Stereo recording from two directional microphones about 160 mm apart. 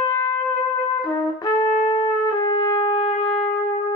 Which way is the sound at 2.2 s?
25° left (ahead or behind).